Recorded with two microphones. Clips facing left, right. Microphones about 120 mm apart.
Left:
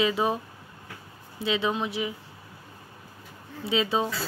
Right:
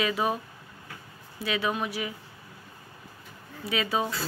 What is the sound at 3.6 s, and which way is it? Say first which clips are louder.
Speech: left 3 dB; 25° left (ahead or behind).